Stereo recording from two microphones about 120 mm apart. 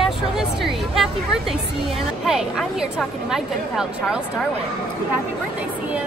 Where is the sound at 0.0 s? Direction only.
Centre (ahead or behind).